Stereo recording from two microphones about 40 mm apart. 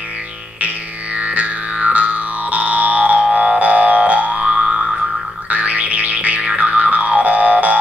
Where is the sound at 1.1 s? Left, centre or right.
Right.